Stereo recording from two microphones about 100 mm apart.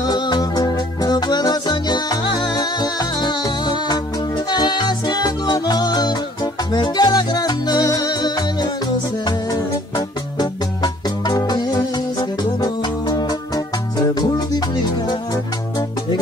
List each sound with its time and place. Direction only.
0.0 s music: 45° left (ahead or behind)